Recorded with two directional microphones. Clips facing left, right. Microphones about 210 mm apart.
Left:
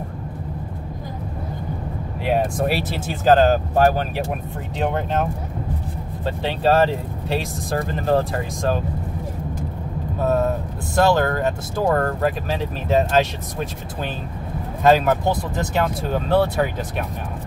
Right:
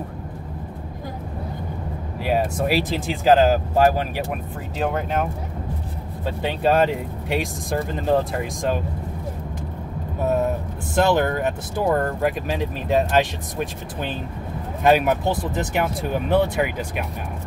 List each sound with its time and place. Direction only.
2.2 s speech: 5° right (ahead or behind)
6.2 s speech: 15° right (ahead or behind)
10.1 s vehicle: 15° right (ahead or behind)
11.0 s speech: 20° right (ahead or behind)
14.8 s speech: 15° right (ahead or behind)